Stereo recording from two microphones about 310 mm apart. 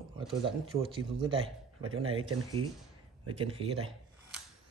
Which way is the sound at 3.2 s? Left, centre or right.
Centre.